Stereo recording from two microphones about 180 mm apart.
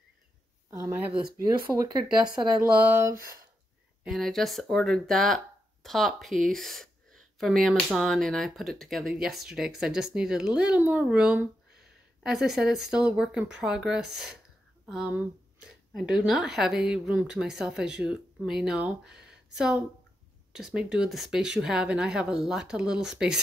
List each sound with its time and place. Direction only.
0.7 s speech: 15° right (ahead or behind)
2.6 s a sound: 10° right (ahead or behind)
4.0 s speech: centre (ahead or behind)